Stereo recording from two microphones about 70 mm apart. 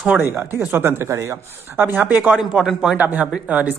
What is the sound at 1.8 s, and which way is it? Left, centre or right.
Speech, right.